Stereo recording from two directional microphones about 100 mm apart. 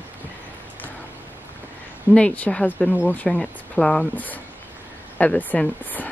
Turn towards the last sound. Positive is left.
turn(degrees=15)  # may be behind; listen again after turning